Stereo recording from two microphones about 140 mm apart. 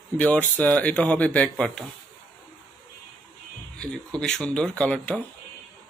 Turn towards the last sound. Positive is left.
turn(degrees=5)  # may be behind; listen again after turning